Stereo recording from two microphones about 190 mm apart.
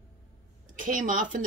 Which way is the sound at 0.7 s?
40° right (ahead or behind).